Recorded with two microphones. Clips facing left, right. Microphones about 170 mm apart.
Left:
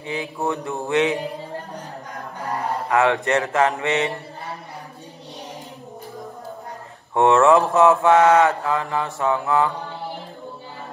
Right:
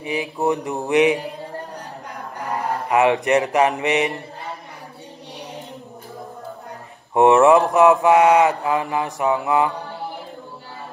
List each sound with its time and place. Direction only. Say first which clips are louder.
0.0 s mantra: right 4 dB; 15° right (ahead or behind)
2.9 s mantra: right 3 dB; 15° right (ahead or behind)
7.2 s mantra: right 2 dB; 15° right (ahead or behind)